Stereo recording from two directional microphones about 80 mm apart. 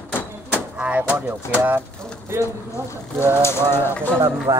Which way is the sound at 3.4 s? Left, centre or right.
Left.